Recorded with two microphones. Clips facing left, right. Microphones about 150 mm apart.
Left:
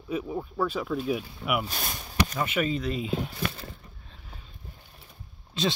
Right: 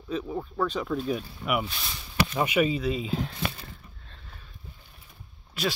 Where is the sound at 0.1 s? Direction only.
10° left (ahead or behind).